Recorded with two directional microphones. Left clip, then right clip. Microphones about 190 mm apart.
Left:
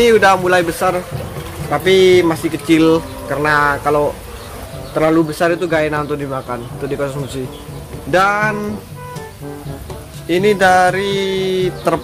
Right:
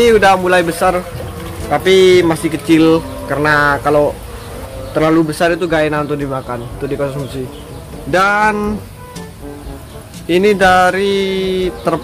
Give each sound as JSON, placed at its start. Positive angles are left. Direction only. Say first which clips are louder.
{"t": 0.0, "sound": "speech", "louder": "right 1 dB", "side_deg": 0}
{"t": 8.1, "sound": "speech", "louder": "right 1 dB", "side_deg": 5}
{"t": 8.4, "sound": "speech", "louder": "right 4 dB", "side_deg": -15}
{"t": 10.2, "sound": "speech", "louder": "right 2 dB", "side_deg": -10}